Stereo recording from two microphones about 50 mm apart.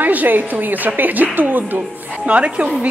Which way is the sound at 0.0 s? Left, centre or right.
Right.